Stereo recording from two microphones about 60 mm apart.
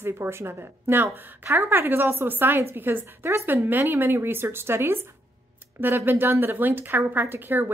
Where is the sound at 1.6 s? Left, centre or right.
Right.